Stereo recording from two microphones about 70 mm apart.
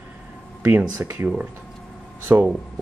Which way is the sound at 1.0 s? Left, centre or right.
Right.